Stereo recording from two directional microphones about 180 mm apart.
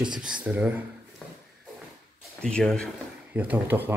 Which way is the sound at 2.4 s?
5° left (ahead or behind).